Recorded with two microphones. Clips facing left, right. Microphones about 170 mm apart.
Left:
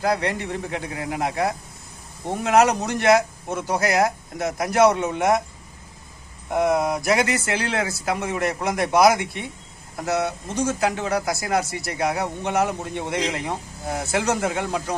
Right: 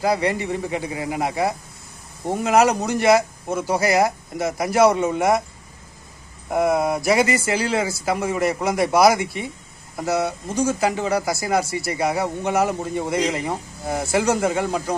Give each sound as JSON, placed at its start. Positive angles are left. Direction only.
{"t": 0.0, "sound": "a man's voice", "side_deg": 0}
{"t": 6.5, "sound": "a man's voice", "side_deg": 0}